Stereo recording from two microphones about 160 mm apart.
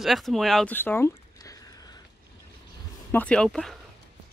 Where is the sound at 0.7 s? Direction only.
15° left (ahead or behind).